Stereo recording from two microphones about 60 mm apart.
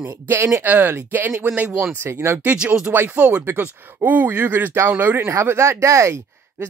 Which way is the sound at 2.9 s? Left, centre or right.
Right.